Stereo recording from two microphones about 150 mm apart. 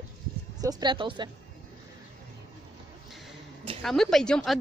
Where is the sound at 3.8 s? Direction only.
5° left (ahead or behind).